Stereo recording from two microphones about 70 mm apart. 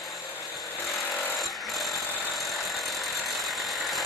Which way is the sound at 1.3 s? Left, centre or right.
Centre.